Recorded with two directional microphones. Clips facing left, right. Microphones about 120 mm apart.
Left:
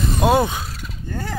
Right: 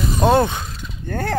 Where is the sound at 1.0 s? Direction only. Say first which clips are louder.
Right 5 dB; 60° right (ahead or behind).